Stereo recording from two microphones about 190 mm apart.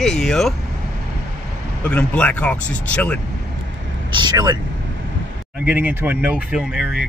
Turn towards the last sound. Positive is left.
turn(degrees=-5)  # may be behind; listen again after turning